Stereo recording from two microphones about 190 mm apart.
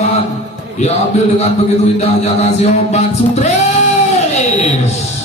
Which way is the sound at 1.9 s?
35° left (ahead or behind).